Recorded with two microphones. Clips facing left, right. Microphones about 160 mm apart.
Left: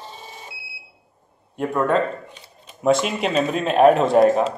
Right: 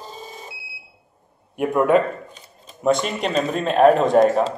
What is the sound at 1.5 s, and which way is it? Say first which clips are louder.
Speech: right 3 dB; 15° right (ahead or behind).